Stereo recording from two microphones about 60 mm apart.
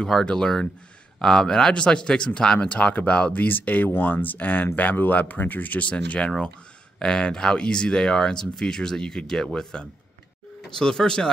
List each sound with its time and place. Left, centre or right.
0.0 s speech: centre